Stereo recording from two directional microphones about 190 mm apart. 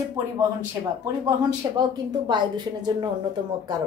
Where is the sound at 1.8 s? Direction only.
25° right (ahead or behind).